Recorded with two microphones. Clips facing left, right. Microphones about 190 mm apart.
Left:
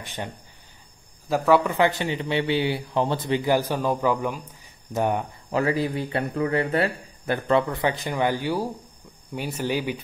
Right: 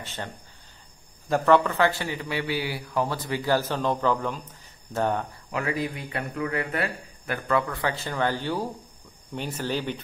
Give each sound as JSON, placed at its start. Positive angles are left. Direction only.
{"t": 0.0, "sound": "a man's voice", "side_deg": 15}
{"t": 1.3, "sound": "a man's voice", "side_deg": 5}
{"t": 5.5, "sound": "a man's voice", "side_deg": 30}